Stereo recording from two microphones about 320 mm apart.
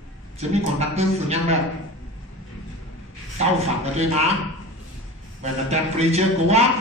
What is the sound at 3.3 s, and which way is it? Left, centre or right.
Speech, centre.